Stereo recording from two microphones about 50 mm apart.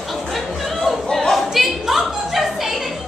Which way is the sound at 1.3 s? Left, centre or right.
Centre.